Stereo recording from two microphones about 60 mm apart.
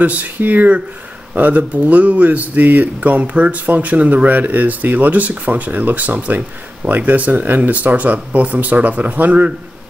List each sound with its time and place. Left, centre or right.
0.0 s speech: right